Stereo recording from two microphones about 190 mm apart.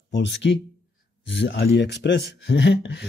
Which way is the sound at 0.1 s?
65° left (ahead or behind).